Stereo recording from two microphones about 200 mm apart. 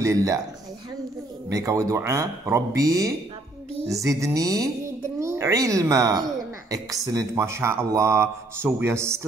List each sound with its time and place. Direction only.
0.0 s speech: 15° right (ahead or behind)
1.5 s speech: 15° right (ahead or behind)